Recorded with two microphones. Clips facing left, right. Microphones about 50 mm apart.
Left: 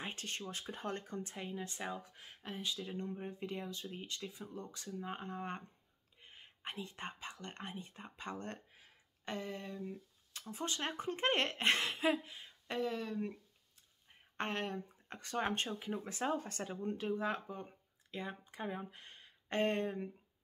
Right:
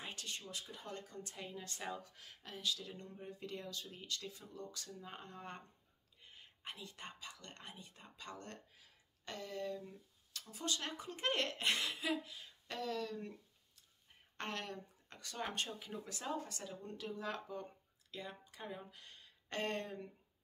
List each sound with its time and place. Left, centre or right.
0.0 s speech: left